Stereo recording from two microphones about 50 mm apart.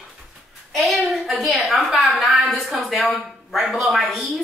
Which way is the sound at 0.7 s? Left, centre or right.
Centre.